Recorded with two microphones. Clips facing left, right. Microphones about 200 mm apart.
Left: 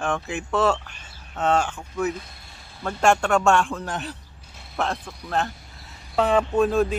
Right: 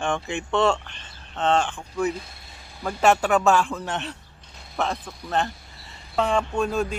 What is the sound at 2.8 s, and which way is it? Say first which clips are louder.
Speech: even; 5° right (ahead or behind).